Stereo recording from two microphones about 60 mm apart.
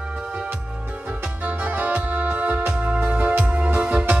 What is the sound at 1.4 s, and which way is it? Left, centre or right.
Music, right.